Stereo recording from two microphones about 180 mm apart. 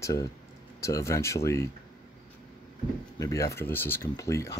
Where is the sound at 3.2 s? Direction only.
15° left (ahead or behind).